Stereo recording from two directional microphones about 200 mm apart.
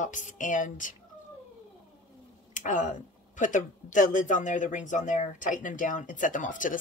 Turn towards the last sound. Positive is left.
turn(degrees=40)  # may be behind; listen again after turning